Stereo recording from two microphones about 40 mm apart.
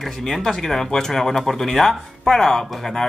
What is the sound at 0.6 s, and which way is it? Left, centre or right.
Speech, centre.